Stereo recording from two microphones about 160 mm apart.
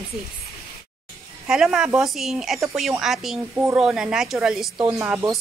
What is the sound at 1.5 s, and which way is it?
A woman's voice, 5° right (ahead or behind).